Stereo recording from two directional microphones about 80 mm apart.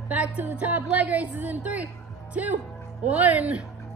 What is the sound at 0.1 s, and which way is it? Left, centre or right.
A woman's voice, centre.